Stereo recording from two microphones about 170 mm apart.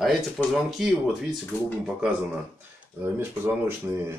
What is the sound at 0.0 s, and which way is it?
Speech, centre (ahead or behind).